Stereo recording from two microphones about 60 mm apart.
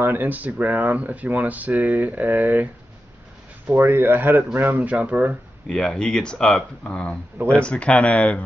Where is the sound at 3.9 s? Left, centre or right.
Right.